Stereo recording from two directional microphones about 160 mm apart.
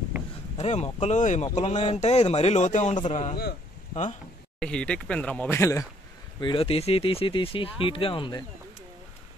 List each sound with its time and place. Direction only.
0.6 s speech: 45° left (ahead or behind)
4.6 s speech: 5° left (ahead or behind)
5.6 s speech: 20° left (ahead or behind)
6.4 s speech: 35° left (ahead or behind)